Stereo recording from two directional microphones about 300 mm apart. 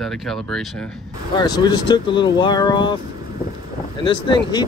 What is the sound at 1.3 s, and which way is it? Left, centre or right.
Speech, centre.